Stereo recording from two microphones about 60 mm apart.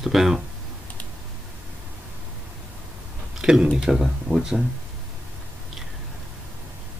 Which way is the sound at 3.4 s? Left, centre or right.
Centre.